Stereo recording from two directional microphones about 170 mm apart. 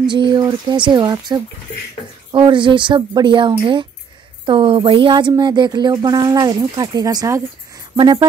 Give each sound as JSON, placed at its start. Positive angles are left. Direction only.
{"t": 0.0, "sound": "speech", "side_deg": -25}